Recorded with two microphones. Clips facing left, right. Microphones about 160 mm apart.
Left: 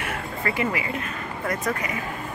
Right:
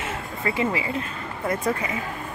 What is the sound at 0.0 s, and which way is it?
Speech, 20° right (ahead or behind).